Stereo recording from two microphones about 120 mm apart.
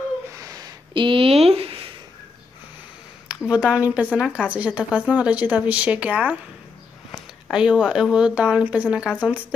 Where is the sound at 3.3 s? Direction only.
10° right (ahead or behind).